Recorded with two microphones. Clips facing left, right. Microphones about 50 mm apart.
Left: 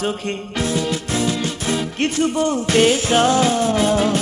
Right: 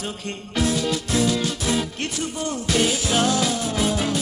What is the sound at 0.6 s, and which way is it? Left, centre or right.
Music, left.